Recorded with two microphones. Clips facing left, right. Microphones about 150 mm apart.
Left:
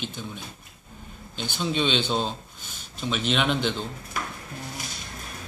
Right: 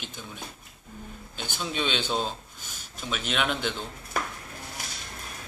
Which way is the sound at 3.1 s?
5° right (ahead or behind).